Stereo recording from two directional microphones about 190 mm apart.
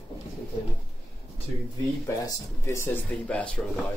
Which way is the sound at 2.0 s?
15° left (ahead or behind).